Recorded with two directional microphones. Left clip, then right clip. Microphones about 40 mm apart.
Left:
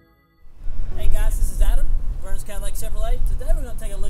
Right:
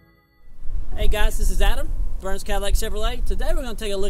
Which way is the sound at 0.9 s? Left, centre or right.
Left.